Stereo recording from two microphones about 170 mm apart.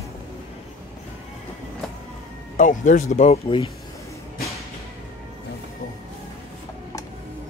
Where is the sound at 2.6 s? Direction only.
45° left (ahead or behind).